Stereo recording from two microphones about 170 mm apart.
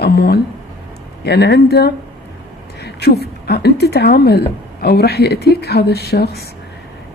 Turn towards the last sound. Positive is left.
turn(degrees=70)  # may be behind; listen again after turning